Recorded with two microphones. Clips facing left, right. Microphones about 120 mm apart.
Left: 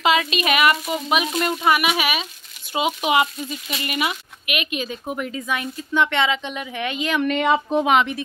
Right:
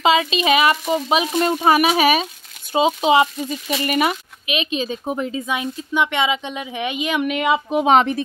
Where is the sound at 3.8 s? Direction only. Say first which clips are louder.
Right 5 dB; 40° right (ahead or behind).